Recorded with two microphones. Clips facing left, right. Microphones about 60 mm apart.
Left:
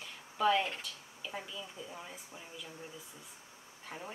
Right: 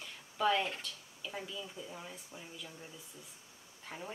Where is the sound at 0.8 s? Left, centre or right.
Centre.